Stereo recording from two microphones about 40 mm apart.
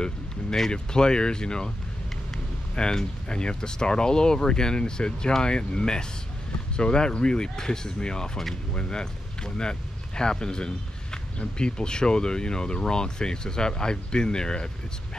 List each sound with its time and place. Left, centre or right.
0.7 s speech: left
2.7 s speech: centre